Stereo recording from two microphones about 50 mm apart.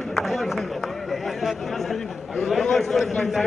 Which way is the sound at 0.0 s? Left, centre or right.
Centre.